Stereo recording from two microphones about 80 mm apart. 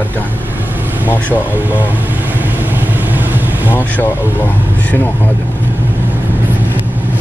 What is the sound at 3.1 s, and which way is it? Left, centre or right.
Vehicle, right.